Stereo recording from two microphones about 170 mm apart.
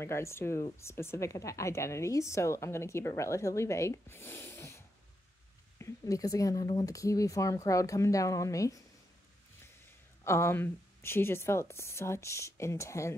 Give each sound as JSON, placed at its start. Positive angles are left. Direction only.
{"t": 0.0, "sound": "speech", "side_deg": 15}
{"t": 10.2, "sound": "speech", "side_deg": 15}